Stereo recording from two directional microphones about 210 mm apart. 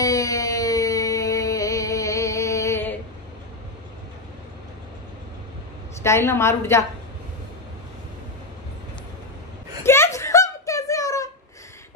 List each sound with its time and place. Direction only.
0.0 s music: 15° left (ahead or behind)
6.0 s a woman's voice: 10° left (ahead or behind)
9.8 s a sound: 10° left (ahead or behind)